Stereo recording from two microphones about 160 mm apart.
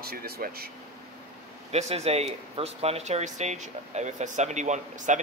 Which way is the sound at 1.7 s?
40° right (ahead or behind).